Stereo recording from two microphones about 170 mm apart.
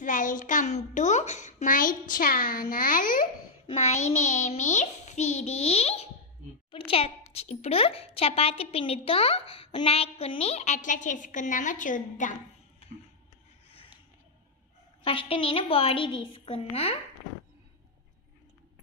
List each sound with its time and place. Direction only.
0.0 s a child's voice: 50° left (ahead or behind)
3.6 s a child's voice: 40° left (ahead or behind)
15.0 s a child's voice: 30° left (ahead or behind)